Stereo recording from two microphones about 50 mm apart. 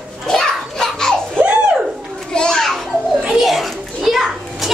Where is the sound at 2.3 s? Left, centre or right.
Centre.